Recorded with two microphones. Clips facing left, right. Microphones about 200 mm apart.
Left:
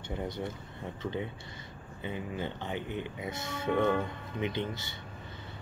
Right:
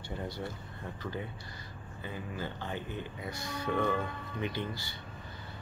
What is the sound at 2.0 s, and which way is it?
Speech, 20° left (ahead or behind).